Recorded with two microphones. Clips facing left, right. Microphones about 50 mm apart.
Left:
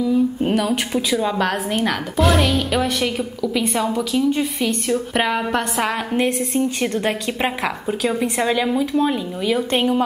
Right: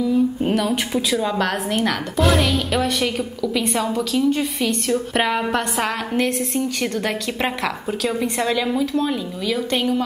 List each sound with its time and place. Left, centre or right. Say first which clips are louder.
0.0 s a woman's voice: left 1 dB; centre
6.1 s a woman's voice: left 2 dB; centre
9.7 s speech: left 1 dB; left